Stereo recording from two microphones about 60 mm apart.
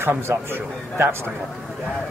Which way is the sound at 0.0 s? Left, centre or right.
Right.